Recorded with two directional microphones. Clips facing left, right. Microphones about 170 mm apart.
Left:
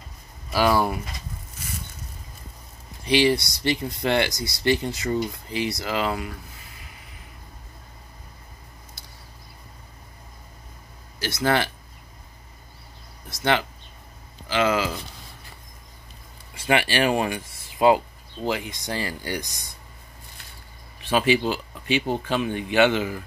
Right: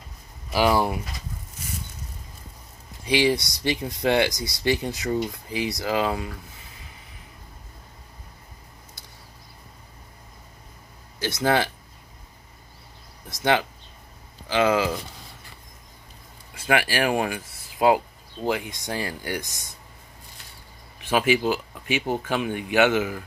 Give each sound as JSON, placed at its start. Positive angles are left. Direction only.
{"t": 0.5, "sound": "speech", "side_deg": -15}
{"t": 3.1, "sound": "speech", "side_deg": -15}
{"t": 11.1, "sound": "speech", "side_deg": -15}
{"t": 13.3, "sound": "speech", "side_deg": -15}
{"t": 16.6, "sound": "speech", "side_deg": -5}
{"t": 21.1, "sound": "speech", "side_deg": -15}